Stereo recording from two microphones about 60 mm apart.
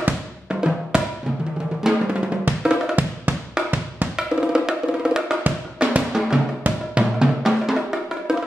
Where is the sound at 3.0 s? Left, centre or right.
Right.